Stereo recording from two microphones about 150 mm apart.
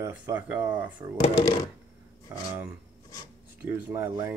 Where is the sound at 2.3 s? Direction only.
20° right (ahead or behind).